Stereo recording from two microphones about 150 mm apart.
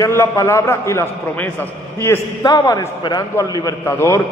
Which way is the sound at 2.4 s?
25° left (ahead or behind).